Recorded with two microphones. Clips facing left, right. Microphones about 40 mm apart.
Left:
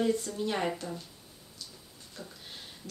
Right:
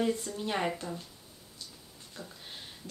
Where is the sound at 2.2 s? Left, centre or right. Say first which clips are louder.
Even; centre.